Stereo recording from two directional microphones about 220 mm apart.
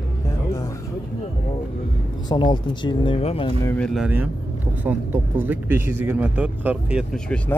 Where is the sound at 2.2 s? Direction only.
20° left (ahead or behind).